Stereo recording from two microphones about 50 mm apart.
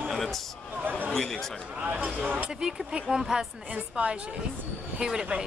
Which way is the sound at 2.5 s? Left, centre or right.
Centre.